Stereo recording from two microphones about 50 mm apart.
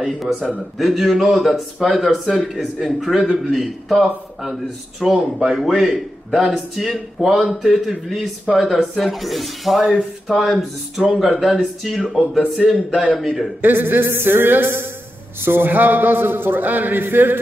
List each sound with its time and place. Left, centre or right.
0.0 s speech: centre
5.4 s a man's voice: centre
11.1 s a man's voice: centre
13.6 s a man's voice: right